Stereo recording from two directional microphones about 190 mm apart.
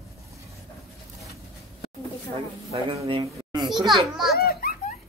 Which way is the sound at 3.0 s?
25° right (ahead or behind).